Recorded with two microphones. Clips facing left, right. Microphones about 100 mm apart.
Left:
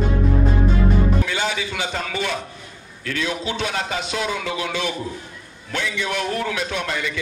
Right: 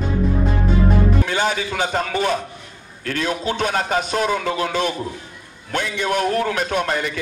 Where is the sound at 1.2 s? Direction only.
45° right (ahead or behind).